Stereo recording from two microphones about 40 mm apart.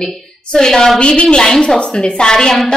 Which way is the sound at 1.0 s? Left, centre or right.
Left.